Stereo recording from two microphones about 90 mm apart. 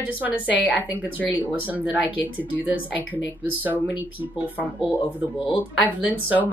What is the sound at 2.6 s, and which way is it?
Speech, 20° right (ahead or behind).